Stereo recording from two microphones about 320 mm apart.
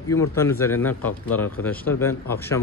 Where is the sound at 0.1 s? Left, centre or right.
Centre.